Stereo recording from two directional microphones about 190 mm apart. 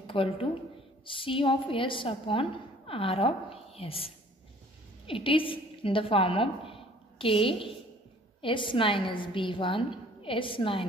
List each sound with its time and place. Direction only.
0.0 s a woman's voice: 30° left (ahead or behind)